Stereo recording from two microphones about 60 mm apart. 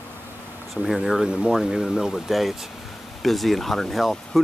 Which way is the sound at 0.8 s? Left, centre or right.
Centre.